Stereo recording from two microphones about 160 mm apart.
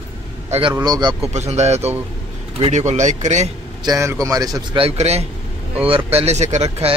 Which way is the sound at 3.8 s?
20° right (ahead or behind).